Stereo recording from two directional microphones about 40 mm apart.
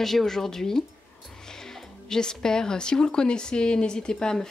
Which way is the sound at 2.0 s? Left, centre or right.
Centre.